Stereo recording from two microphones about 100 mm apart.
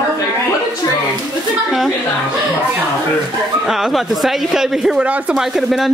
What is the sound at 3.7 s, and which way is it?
A woman's voice, 5° right (ahead or behind).